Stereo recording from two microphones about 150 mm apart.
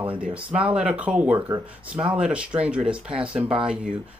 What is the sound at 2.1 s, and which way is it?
Speech, 5° right (ahead or behind).